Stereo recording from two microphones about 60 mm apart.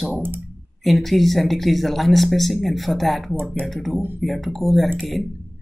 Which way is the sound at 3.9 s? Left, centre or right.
Right.